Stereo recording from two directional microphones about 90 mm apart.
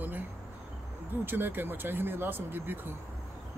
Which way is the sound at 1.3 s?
20° right (ahead or behind).